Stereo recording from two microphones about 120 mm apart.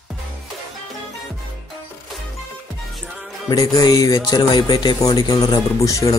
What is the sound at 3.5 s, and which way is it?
Speech, 30° left (ahead or behind).